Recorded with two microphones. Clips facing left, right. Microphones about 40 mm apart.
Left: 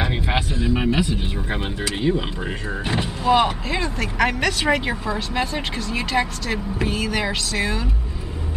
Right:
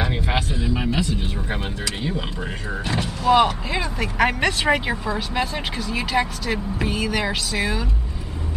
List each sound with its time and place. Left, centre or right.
0.0 s vehicle: centre
0.7 s music: left
1.5 s speech: centre
3.3 s speech: centre
4.8 s speech: centre